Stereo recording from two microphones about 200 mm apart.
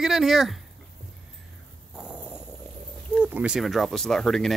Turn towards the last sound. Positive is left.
turn(degrees=0)  # may be behind; listen again after turning